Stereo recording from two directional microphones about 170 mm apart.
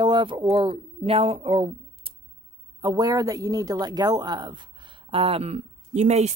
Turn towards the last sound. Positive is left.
turn(degrees=-40)  # may be behind; listen again after turning